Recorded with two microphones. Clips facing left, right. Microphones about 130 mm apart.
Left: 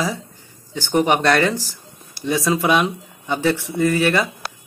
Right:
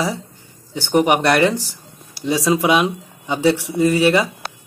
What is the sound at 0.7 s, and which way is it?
Speech, 15° right (ahead or behind).